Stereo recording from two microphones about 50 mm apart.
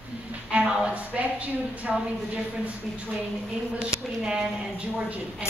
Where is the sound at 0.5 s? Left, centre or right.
Centre.